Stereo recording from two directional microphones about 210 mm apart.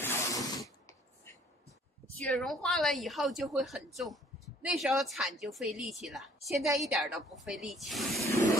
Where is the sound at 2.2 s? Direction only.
5° left (ahead or behind).